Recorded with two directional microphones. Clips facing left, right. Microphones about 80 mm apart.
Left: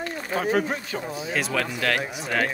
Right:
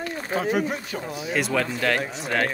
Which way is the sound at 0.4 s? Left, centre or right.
Left.